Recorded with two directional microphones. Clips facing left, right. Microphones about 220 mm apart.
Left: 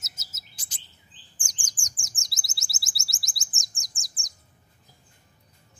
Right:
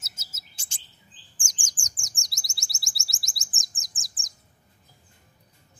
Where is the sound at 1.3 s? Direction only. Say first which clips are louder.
Even; 45° right (ahead or behind).